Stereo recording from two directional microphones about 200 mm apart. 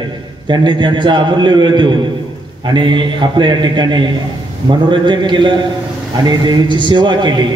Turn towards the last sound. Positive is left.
turn(degrees=-25)  # may be behind; listen again after turning